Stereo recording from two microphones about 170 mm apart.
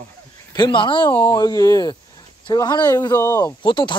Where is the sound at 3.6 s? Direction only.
30° left (ahead or behind).